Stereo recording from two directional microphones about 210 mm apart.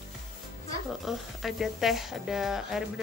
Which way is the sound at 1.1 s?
Centre (ahead or behind).